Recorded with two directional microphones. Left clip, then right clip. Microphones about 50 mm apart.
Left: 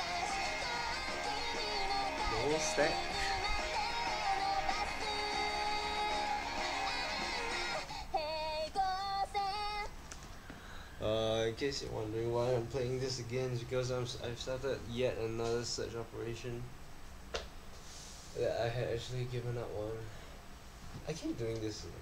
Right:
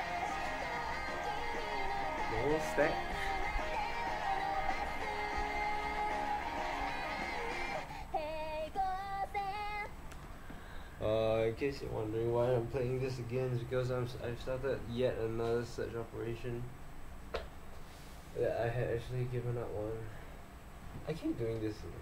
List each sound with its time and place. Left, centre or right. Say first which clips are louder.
0.0 s music: left 1 dB; right
2.6 s speech: even; centre
2.9 s speech: left 1 dB; centre
3.3 s music: left 1 dB; right
8.2 s female singing: left 2 dB; centre
11.0 s a sound: right 2 dB; left
11.2 s a sound: right 2 dB; left
11.6 s speech: even; left; by 14.8 s centre
15.0 s speech: right 1 dB; left
15.6 s speech: even; centre
18.4 s speech: even; left